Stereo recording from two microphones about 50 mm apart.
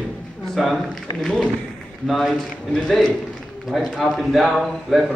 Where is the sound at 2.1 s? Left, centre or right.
Centre.